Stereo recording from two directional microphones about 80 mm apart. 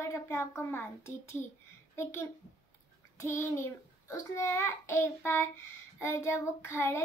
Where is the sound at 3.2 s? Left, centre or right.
Left.